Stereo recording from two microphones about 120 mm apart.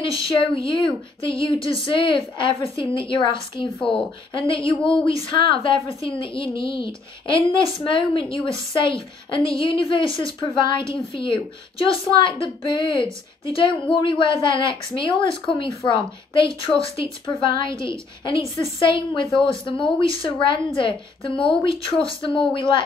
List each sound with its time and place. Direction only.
0.1 s a woman's voice: 45° left (ahead or behind)